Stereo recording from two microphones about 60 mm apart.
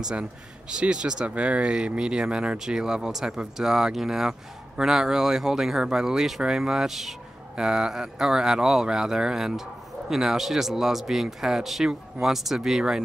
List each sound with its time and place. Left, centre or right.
0.0 s speech: centre